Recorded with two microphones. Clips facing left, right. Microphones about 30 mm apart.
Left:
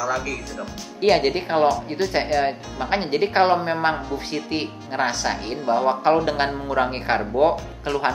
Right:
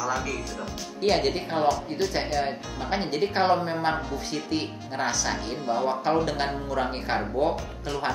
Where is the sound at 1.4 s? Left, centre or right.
Left.